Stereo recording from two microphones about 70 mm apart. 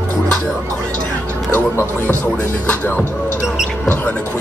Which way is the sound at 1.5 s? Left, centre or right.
Left.